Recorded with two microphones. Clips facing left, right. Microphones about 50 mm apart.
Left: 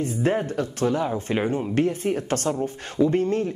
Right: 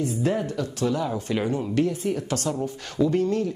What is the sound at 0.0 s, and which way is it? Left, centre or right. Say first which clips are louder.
A woman's voice: left 1 dB; left.